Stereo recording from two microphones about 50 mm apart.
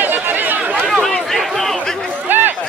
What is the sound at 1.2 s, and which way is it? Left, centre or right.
Chatter, centre.